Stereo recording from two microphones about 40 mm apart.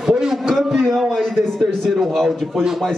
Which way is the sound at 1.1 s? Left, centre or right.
Centre.